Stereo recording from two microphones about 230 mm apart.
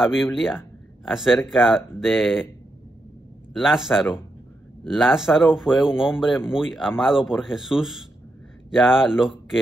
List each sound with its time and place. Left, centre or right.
0.0 s speech: centre
3.5 s speech: centre